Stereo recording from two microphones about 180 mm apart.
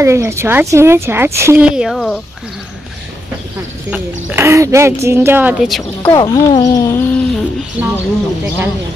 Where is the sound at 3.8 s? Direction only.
10° right (ahead or behind).